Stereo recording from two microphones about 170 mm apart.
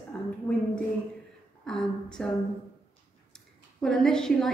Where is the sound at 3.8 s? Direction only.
5° left (ahead or behind).